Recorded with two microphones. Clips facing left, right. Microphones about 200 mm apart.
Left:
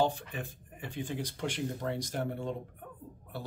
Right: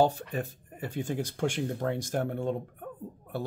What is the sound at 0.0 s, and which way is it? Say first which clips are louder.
Speech: right 5 dB; 40° right (ahead or behind).